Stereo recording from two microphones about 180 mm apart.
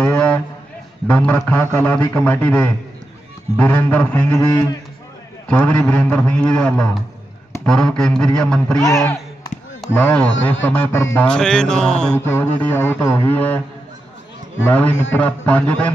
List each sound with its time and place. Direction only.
0.0 s a sound: 10° left (ahead or behind)
1.0 s a man's voice: 5° left (ahead or behind)
4.4 s a man's voice: 20° left (ahead or behind)
5.5 s a man's voice: 5° left (ahead or behind)
8.8 s a man's voice: 15° left (ahead or behind)
14.6 s a man's voice: 10° left (ahead or behind)